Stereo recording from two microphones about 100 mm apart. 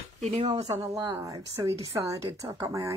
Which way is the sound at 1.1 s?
30° right (ahead or behind).